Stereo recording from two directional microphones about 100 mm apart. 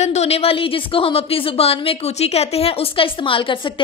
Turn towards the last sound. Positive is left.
turn(degrees=60)  # may be behind; listen again after turning